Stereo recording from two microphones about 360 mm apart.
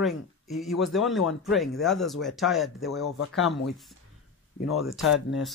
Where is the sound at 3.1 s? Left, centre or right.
Left.